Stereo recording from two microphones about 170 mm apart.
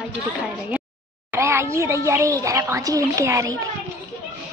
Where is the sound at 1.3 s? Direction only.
15° right (ahead or behind).